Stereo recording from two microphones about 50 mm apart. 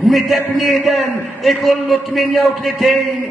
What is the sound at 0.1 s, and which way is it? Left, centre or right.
Speech, centre.